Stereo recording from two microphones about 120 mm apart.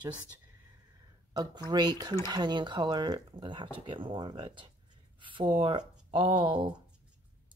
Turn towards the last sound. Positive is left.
turn(degrees=-40)  # may be behind; listen again after turning